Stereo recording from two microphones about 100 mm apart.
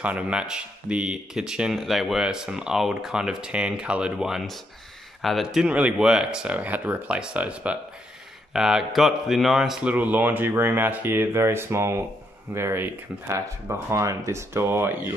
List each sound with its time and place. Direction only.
0.0 s speech: 10° right (ahead or behind)